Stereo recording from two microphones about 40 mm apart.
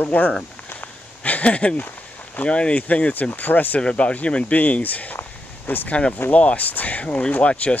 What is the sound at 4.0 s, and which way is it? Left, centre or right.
Speech, left.